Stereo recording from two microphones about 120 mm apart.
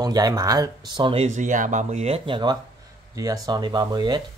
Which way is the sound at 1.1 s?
70° right (ahead or behind).